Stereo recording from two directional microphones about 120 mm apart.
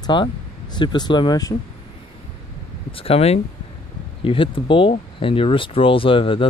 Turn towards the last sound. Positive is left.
turn(degrees=50)  # may be behind; listen again after turning